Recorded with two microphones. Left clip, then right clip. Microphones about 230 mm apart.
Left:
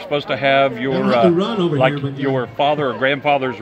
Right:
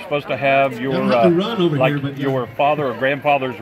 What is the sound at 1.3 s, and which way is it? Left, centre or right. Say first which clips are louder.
Speech: even; right.